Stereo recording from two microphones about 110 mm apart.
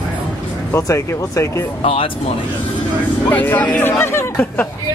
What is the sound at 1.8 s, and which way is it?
Speech, 60° left (ahead or behind).